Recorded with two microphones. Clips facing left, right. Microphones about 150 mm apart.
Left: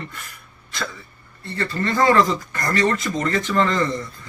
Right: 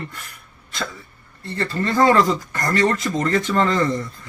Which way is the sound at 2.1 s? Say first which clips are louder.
Right 1 dB; 40° right (ahead or behind).